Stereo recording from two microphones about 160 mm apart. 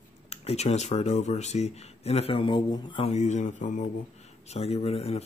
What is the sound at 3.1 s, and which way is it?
Speech, 45° left (ahead or behind).